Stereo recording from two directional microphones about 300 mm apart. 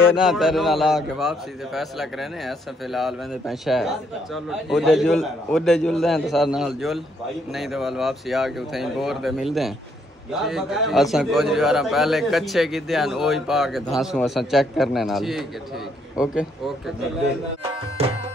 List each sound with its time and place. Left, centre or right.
0.1 s a man's voice: centre